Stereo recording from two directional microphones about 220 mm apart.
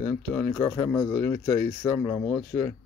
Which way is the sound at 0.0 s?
10° left (ahead or behind).